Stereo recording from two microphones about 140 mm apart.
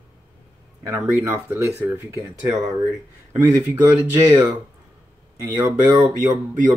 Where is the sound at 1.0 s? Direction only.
15° right (ahead or behind).